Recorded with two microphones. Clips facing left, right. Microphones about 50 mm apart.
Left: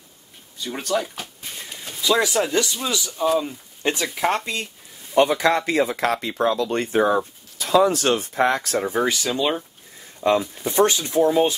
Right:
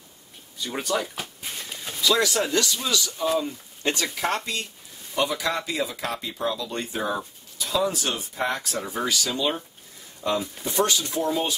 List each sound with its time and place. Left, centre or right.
0.6 s a sound: centre
2.0 s speech: left
5.1 s speech: left
8.7 s speech: left